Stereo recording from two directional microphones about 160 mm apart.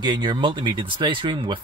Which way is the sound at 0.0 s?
30° right (ahead or behind).